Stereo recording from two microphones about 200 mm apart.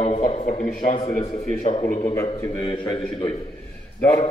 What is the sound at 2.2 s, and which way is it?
A man's voice, 30° left (ahead or behind).